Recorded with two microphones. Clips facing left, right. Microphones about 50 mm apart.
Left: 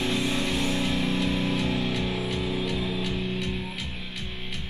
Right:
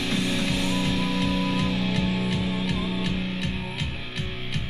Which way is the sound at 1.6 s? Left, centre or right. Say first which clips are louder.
Right 1 dB; left.